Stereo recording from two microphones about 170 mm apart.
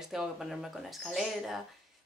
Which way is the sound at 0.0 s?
Centre (ahead or behind).